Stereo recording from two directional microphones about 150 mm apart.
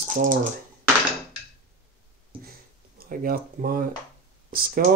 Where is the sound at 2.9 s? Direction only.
80° right.